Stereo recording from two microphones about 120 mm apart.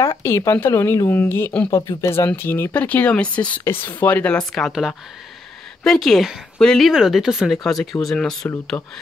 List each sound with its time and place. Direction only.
0.2 s speech: 20° left (ahead or behind); by 8.5 s 5° left (ahead or behind)
8.7 s speech: 30° left (ahead or behind)